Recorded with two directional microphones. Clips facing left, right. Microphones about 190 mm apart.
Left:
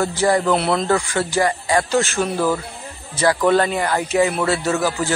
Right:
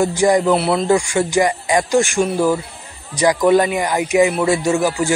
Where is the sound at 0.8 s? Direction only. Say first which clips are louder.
Right 4 dB; 15° right (ahead or behind).